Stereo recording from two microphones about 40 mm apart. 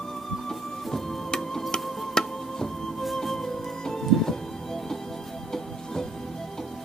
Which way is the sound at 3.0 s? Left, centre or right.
Centre.